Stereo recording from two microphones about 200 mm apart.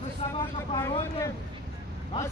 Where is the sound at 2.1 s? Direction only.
25° left (ahead or behind).